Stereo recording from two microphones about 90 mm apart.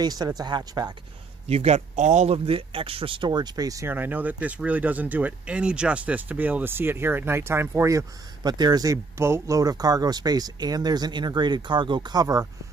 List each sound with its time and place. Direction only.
0.0 s speech: 50° right (ahead or behind)
2.3 s speech: 90° right; by 3.8 s 45° right (ahead or behind)
3.8 s speech: 20° right (ahead or behind)
8.4 s speech: 50° right (ahead or behind); by 9.6 s 35° right (ahead or behind)
9.6 s speech: 45° right (ahead or behind)